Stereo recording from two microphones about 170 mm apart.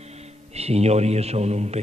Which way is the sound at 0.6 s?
40° right (ahead or behind).